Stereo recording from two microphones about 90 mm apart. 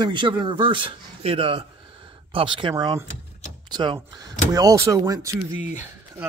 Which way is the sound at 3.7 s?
55° right (ahead or behind).